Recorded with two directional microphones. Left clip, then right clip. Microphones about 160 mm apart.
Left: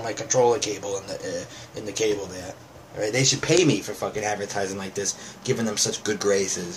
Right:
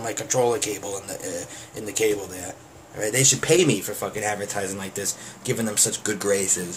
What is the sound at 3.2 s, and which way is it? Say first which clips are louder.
Speech: right 2 dB; 15° right (ahead or behind).